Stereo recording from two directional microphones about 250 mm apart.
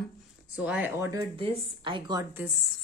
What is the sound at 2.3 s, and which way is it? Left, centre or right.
Speech, centre.